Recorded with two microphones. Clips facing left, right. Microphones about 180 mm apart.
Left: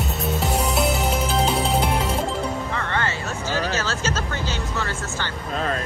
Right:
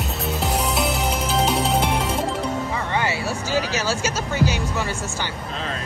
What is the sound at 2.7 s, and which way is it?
Music, 10° right (ahead or behind).